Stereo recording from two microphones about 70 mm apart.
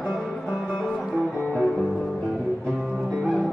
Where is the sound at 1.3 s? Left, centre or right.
Centre.